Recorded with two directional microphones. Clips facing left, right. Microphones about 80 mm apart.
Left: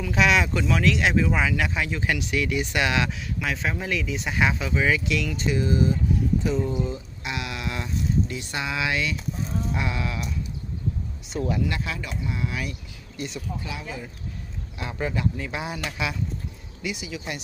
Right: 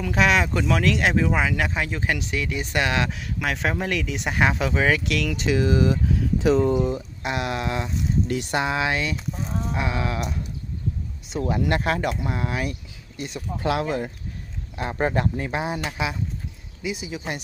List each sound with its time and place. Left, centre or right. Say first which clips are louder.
0.0 s speech: right 1 dB; right
6.7 s speech: right 6 dB; right
7.2 s speech: right 5 dB; right
8.3 s speech: right 6 dB; right
11.6 s speech: right 7 dB; right
13.7 s speech: right 11 dB; right
14.8 s speech: right 5 dB; right
15.4 s speech: right 4 dB; right
16.9 s speech: right 4 dB; right